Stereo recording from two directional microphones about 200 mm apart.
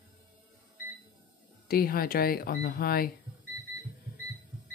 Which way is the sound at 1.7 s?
45° left (ahead or behind).